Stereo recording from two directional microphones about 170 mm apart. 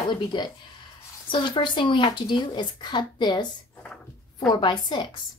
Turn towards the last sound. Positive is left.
turn(degrees=25)  # may be behind; listen again after turning